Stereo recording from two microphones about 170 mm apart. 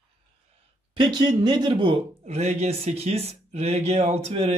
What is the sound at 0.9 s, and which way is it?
A man's voice, 25° right (ahead or behind).